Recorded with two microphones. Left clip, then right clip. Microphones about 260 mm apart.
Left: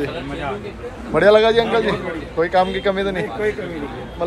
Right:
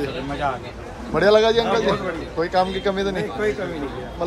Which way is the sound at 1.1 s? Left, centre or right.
Centre.